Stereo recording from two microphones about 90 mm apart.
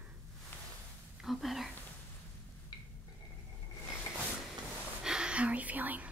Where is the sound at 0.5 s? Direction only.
25° left (ahead or behind).